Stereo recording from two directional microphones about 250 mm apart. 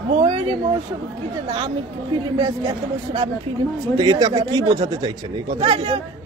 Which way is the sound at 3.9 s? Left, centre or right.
Centre.